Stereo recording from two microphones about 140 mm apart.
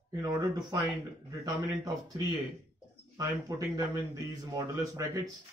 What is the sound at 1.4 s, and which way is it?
Speech, 25° right (ahead or behind).